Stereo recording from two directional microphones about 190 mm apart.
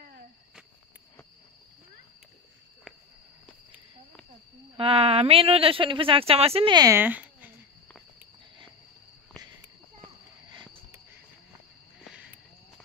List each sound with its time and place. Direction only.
4.7 s speech: 30° right (ahead or behind); by 7.5 s 10° right (ahead or behind)